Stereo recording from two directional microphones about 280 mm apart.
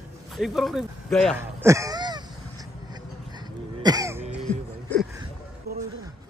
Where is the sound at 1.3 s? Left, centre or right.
Centre.